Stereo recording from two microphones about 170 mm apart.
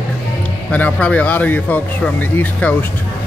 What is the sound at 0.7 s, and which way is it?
Speech, 10° left (ahead or behind).